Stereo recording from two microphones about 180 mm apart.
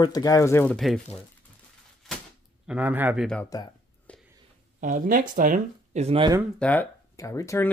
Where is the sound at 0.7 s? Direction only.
Centre (ahead or behind).